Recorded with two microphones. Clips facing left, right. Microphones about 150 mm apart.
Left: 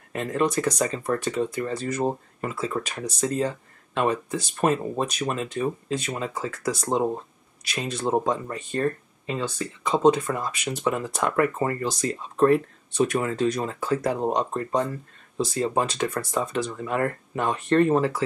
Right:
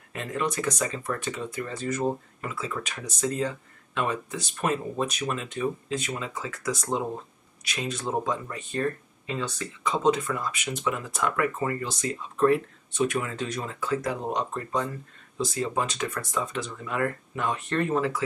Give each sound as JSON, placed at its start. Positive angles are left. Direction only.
{"t": 0.1, "sound": "speech", "side_deg": 40}